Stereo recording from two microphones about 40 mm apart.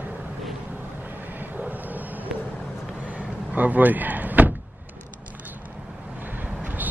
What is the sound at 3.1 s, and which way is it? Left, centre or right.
Vehicle, right.